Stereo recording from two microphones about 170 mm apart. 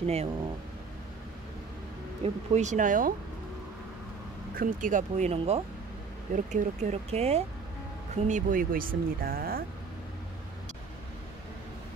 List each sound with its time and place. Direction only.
0.0 s speech: 35° right (ahead or behind)
2.2 s speech: 45° right (ahead or behind)
4.6 s speech: 50° right (ahead or behind)
8.3 s speech: 50° right (ahead or behind)